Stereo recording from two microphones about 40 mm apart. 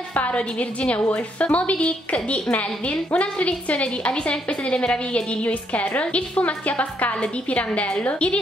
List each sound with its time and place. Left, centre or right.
0.1 s a woman's voice: left